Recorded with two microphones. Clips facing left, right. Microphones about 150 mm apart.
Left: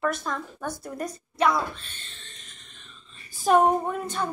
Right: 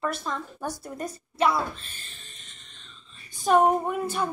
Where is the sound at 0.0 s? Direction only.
Centre (ahead or behind).